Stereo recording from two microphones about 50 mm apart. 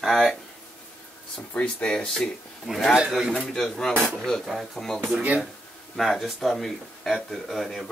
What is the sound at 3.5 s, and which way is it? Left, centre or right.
Speech, centre.